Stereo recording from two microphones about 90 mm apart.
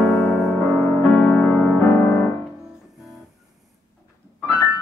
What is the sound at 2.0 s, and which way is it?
Piano, 25° left (ahead or behind).